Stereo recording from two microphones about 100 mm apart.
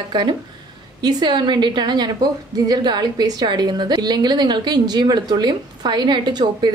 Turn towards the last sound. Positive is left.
turn(degrees=-50)  # may be behind; listen again after turning